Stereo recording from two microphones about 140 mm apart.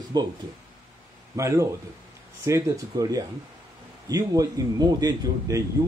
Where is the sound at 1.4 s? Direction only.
20° right (ahead or behind).